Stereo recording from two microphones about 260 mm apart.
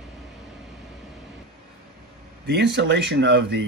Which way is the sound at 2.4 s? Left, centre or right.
Right.